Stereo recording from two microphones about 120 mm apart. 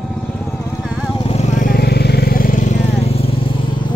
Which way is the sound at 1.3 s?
70° left (ahead or behind).